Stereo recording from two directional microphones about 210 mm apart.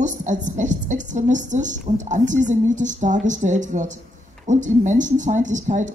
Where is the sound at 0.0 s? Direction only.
35° right (ahead or behind).